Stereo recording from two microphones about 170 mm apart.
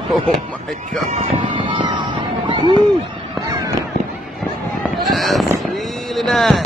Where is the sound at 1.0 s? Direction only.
40° right (ahead or behind).